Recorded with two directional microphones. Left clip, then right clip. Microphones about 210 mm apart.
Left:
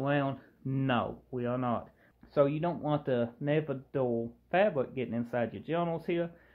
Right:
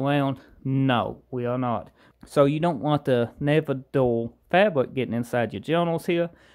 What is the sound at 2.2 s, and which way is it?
Speech, 50° right (ahead or behind).